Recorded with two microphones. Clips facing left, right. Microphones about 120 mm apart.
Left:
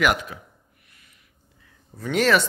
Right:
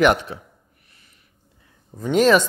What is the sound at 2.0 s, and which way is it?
Speech, 20° right (ahead or behind).